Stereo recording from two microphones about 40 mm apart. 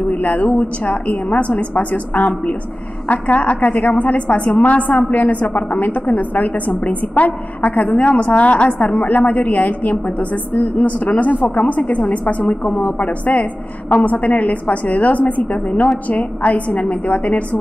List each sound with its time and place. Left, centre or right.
0.1 s a woman's voice: left
12.6 s a woman's voice: left